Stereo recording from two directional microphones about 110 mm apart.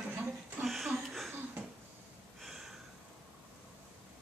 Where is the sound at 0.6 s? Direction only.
Centre (ahead or behind).